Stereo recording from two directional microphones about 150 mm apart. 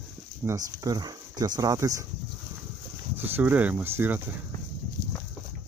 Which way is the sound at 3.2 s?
15° right (ahead or behind).